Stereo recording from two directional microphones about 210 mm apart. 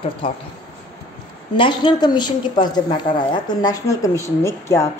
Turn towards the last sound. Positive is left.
turn(degrees=15)  # may be behind; listen again after turning